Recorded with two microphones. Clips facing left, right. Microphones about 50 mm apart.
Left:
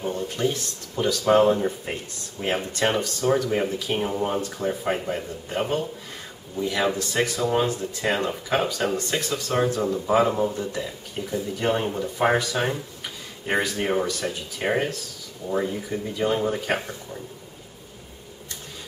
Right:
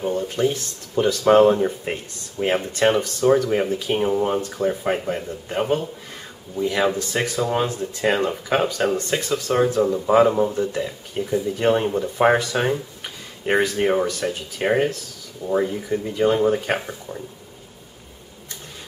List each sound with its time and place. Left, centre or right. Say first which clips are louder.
0.0 s speech: right 4 dB; centre
2.4 s speech: right 5 dB; centre